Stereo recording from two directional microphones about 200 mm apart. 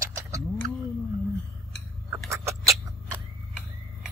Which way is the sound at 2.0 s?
15° right (ahead or behind).